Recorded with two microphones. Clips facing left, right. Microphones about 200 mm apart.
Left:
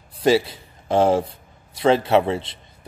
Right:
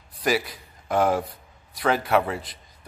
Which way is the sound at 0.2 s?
25° left (ahead or behind).